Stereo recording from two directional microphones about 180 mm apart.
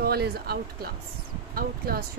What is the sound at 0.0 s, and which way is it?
Speech, 60° right (ahead or behind).